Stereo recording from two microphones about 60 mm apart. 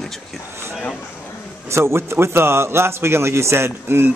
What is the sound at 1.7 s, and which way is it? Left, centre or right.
A man's voice, right.